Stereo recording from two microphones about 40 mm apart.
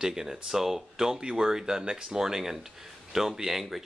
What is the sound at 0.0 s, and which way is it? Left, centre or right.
Speech, centre.